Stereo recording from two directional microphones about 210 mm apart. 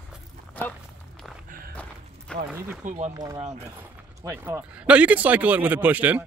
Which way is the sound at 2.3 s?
5° left (ahead or behind).